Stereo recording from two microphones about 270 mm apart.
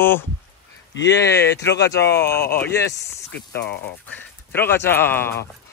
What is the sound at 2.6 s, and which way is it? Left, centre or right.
Speech, centre.